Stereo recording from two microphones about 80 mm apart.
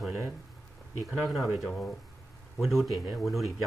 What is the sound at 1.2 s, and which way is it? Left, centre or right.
Speech, centre.